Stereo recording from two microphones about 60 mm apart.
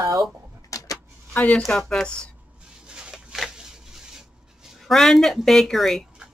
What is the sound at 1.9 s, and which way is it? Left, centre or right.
Speech, centre.